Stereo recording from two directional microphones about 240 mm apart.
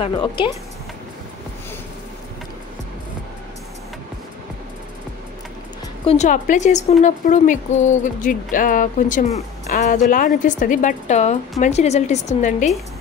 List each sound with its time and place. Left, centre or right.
0.0 s a woman's voice: centre
6.0 s a woman's voice: left